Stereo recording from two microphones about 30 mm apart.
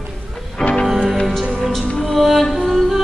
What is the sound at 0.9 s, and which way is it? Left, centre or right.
Music, centre.